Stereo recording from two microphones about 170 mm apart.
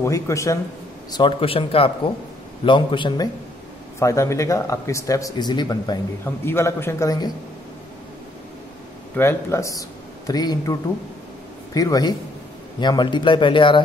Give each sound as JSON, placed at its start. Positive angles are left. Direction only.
{"t": 0.0, "sound": "a man's voice", "side_deg": 15}
{"t": 1.1, "sound": "speech", "side_deg": 30}
{"t": 4.0, "sound": "speech", "side_deg": 15}
{"t": 6.2, "sound": "a man's voice", "side_deg": 15}
{"t": 9.1, "sound": "a man's voice", "side_deg": 15}